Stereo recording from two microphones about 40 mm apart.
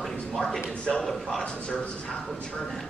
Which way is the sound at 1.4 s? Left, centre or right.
Left.